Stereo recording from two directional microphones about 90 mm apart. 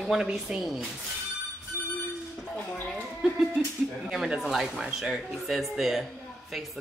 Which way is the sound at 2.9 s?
Centre (ahead or behind).